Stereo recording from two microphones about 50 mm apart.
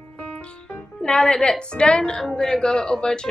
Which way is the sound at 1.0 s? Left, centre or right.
Centre.